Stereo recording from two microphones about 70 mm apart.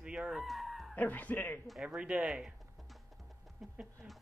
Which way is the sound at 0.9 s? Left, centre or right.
Left.